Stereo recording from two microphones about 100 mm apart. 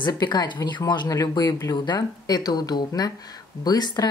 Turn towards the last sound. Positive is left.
turn(degrees=40)  # may be behind; listen again after turning